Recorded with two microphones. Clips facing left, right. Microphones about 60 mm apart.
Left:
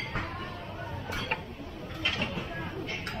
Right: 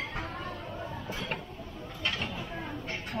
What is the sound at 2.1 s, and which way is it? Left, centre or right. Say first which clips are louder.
Mechanisms: left 2 dB; centre.